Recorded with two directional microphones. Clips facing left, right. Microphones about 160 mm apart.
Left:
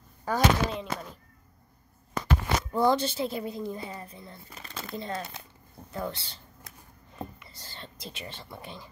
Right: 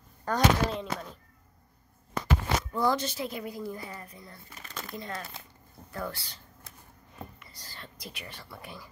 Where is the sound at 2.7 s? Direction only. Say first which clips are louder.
Left 5 dB; 25° left (ahead or behind).